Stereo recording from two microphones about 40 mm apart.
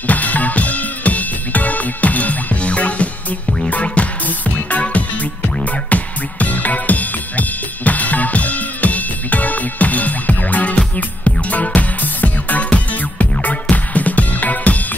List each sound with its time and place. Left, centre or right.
0.0 s music: left
12.6 s music: left